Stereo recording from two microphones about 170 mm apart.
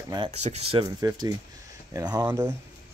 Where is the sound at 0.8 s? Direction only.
25° right (ahead or behind).